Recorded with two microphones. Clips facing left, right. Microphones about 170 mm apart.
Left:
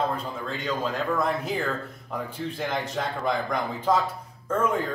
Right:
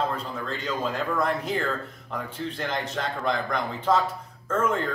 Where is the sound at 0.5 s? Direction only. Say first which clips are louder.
Left 1 dB; centre (ahead or behind).